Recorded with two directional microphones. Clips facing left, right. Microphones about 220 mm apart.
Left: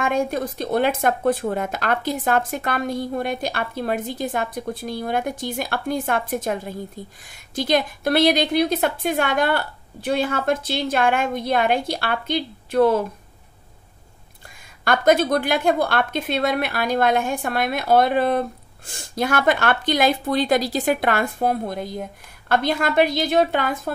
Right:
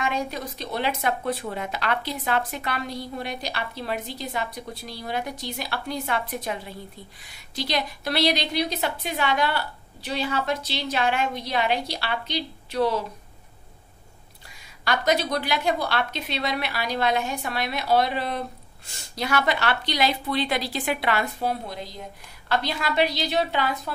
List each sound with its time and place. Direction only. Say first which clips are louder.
0.0 s speech: left 6 dB; 50° left (ahead or behind)
14.9 s speech: left 6 dB; 50° left (ahead or behind)